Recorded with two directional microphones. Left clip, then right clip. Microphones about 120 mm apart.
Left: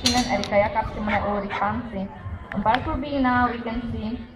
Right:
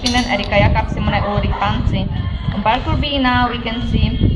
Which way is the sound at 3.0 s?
10° right (ahead or behind).